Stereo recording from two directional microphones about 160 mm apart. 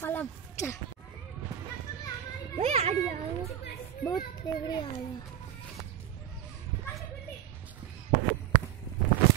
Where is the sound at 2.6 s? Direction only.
40° right (ahead or behind).